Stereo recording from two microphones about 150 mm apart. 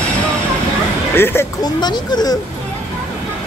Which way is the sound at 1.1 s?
15° left (ahead or behind).